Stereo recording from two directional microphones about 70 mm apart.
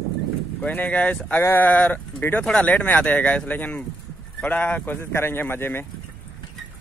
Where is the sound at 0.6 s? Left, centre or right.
Left.